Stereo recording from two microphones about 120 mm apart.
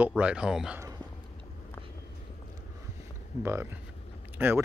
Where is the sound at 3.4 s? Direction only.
20° right (ahead or behind).